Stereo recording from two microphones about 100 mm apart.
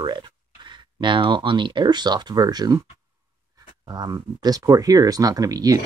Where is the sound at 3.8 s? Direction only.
45° right (ahead or behind).